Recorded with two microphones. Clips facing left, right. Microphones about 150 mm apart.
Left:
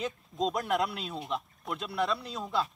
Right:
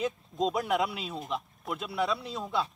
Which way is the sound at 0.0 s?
Centre (ahead or behind).